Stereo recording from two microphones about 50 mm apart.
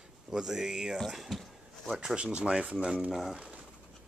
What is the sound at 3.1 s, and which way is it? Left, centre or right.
Speech, centre.